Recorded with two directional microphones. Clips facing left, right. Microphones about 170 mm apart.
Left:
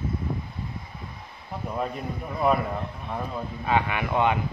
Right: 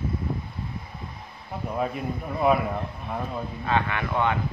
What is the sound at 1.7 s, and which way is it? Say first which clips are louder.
Speech: right 2 dB; centre (ahead or behind).